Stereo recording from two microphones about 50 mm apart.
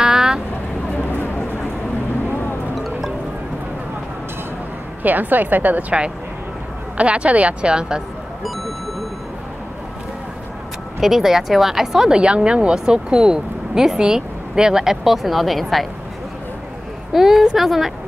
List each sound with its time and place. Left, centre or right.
0.0 s vehicle: centre
1.0 s a sound: left
2.7 s wind chime: centre
5.0 s a woman's voice: right; by 8.0 s centre
11.0 s speech: centre
12.2 s speech: centre
17.1 s a woman's voice: centre